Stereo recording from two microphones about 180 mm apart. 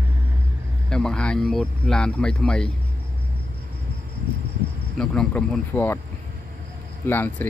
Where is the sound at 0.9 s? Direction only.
5° left (ahead or behind).